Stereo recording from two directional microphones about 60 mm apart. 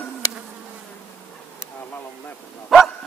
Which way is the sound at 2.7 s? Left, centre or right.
Centre.